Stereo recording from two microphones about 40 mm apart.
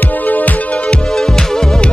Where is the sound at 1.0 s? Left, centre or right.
Centre.